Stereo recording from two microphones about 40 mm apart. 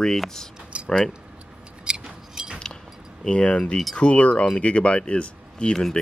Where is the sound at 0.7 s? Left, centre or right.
Right.